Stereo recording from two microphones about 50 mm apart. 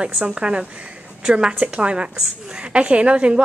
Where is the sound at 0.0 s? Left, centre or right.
Right.